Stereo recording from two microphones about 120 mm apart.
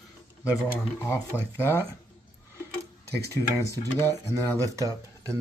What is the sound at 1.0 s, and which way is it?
Speech, 20° left (ahead or behind).